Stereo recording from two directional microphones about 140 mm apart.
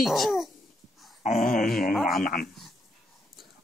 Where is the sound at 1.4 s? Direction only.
85° left.